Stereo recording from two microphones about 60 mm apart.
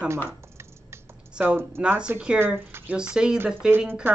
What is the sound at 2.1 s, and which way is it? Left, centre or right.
Speech, right.